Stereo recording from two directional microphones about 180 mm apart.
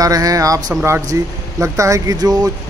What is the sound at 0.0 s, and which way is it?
Speech, 20° right (ahead or behind).